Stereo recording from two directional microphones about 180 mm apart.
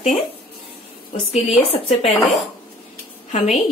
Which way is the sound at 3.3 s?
40° left (ahead or behind).